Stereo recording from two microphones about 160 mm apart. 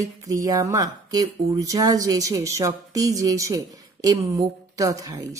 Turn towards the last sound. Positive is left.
turn(degrees=-20)  # may be behind; listen again after turning